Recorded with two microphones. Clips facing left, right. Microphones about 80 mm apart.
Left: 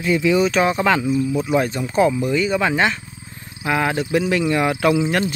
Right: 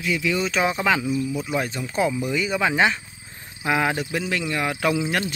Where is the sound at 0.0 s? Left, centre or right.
Left.